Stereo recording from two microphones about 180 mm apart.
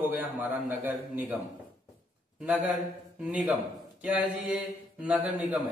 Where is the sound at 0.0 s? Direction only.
10° right (ahead or behind).